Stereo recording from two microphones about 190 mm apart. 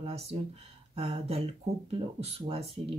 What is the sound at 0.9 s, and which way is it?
Speech, 30° right (ahead or behind).